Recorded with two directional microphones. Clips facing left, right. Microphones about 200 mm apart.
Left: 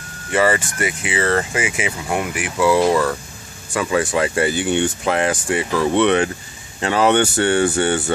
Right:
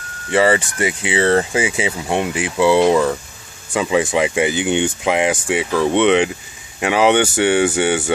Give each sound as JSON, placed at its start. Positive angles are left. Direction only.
{"t": 0.3, "sound": "speech", "side_deg": -25}